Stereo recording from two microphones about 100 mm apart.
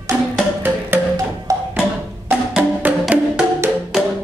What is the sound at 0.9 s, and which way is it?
Music, 20° right (ahead or behind).